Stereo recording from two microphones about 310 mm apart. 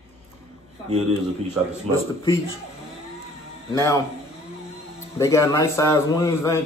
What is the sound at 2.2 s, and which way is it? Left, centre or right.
Speech, centre.